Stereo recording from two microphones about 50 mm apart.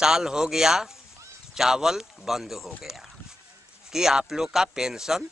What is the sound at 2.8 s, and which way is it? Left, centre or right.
Dog, centre.